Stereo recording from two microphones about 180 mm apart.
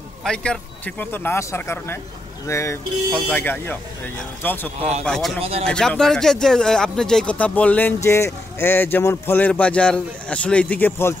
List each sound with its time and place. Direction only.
0.2 s speech: 5° left (ahead or behind)
5.0 s a man's voice: 5° left (ahead or behind)
5.4 s speech: 35° right (ahead or behind)
5.7 s speech: 5° left (ahead or behind)